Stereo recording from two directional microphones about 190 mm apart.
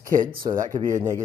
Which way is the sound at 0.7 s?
25° right (ahead or behind).